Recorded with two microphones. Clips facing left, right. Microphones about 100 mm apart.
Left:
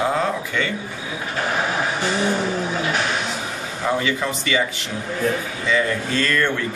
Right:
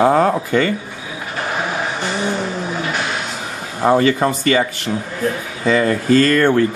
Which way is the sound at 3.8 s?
45° right (ahead or behind).